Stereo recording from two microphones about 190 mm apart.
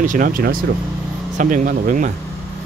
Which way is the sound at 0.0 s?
45° right (ahead or behind).